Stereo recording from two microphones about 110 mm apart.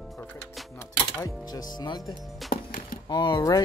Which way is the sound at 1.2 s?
35° left (ahead or behind).